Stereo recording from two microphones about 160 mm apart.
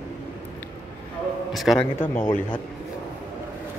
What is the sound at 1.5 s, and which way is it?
Speech, centre (ahead or behind).